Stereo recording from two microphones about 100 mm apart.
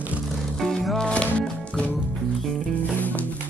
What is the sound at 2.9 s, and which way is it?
Music, 15° left (ahead or behind).